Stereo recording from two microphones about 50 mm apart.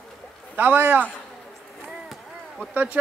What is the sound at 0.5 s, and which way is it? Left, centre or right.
Speech, right.